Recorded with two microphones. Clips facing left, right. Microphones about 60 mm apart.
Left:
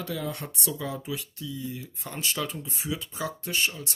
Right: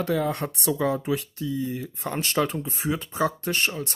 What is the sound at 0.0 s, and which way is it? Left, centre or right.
Speech, right.